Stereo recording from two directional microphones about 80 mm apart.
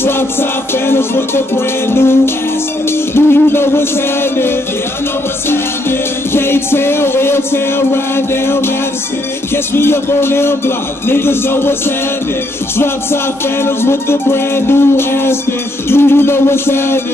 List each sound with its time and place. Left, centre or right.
0.0 s music: left
9.8 s music: left
12.7 s music: left